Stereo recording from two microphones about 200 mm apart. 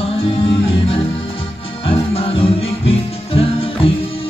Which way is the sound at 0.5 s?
30° left (ahead or behind).